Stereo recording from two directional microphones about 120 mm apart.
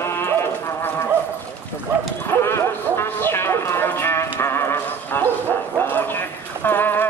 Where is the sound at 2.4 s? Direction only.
20° left (ahead or behind).